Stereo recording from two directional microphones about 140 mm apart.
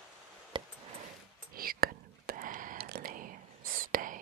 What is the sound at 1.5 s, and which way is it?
Whispering, 90° right.